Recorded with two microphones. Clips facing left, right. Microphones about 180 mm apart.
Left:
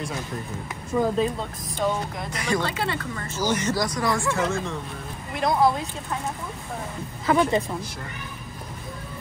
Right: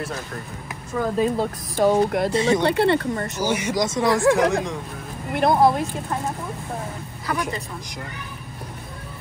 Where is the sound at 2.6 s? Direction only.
60° right (ahead or behind).